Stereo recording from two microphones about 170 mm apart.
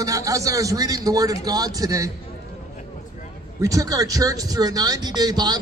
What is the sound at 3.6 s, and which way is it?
Speech, 20° right (ahead or behind).